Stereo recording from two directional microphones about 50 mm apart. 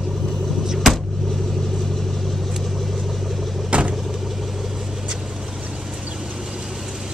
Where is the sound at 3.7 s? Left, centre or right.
Right.